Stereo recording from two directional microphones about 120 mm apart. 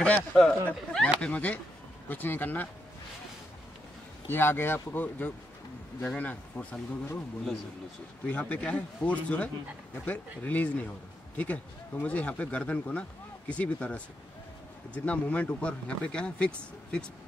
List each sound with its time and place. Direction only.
0.0 s speech: 10° left (ahead or behind)
4.3 s speech: 20° left (ahead or behind)
8.3 s speech: 10° left (ahead or behind)
15.0 s speech: 10° left (ahead or behind)